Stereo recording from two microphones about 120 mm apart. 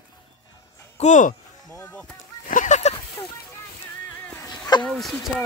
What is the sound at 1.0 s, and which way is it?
Speech, 90° left.